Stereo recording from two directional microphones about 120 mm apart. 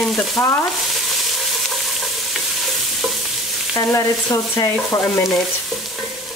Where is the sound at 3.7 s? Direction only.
25° left (ahead or behind).